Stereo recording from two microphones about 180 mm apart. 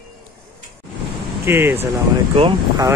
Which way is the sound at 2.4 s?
25° right (ahead or behind).